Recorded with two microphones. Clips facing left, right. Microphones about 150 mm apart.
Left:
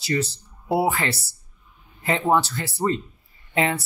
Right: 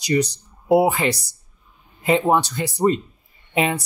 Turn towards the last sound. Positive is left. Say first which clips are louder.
# right 2 dB
turn(degrees=-15)  # may be behind; listen again after turning